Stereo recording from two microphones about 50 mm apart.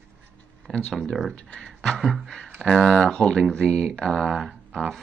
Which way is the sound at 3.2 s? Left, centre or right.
Centre.